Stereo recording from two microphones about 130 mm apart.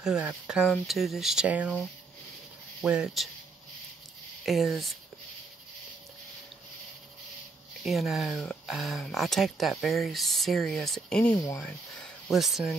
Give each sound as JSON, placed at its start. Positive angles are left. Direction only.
{"t": 0.0, "sound": "speech", "side_deg": -5}
{"t": 2.8, "sound": "speech", "side_deg": -5}
{"t": 4.5, "sound": "speech", "side_deg": 0}
{"t": 7.8, "sound": "speech", "side_deg": 0}
{"t": 11.3, "sound": "speech", "side_deg": 25}
{"t": 11.6, "sound": "speech", "side_deg": 5}